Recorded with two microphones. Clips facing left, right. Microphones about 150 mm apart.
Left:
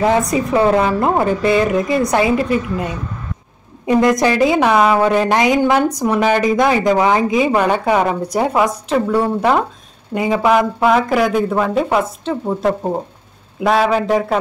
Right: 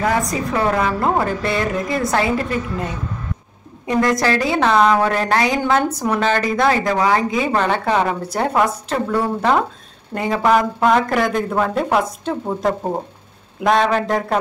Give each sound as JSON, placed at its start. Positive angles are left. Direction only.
{"t": 0.3, "sound": "a woman's voice", "side_deg": 25}